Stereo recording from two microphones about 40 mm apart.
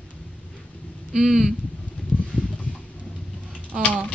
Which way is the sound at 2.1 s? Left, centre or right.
Left.